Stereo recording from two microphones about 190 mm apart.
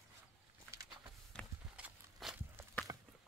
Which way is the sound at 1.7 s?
5° right (ahead or behind).